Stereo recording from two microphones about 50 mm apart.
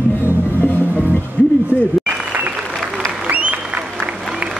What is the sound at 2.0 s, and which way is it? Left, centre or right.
Applause, right.